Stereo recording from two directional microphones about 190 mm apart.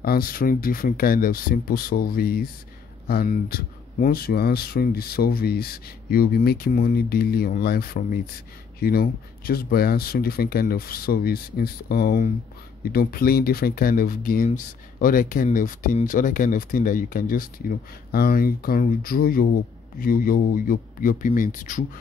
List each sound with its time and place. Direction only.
0.0 s speech: 50° left (ahead or behind)